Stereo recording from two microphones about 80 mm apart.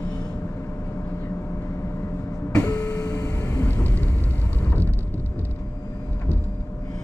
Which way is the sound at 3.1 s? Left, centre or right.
Left.